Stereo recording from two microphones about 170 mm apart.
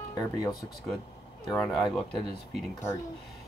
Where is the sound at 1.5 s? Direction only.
Centre (ahead or behind).